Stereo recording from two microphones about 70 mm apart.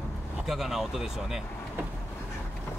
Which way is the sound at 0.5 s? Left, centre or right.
Centre.